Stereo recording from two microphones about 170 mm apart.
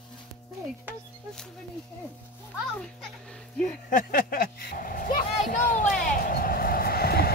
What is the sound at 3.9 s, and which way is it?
Speech, 55° left (ahead or behind).